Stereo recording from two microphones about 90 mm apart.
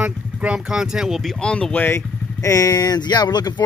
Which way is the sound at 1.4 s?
10° left (ahead or behind).